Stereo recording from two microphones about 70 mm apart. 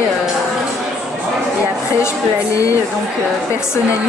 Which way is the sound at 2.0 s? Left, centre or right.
Left.